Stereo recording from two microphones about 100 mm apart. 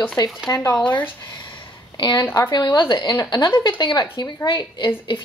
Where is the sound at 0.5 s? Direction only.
30° left (ahead or behind).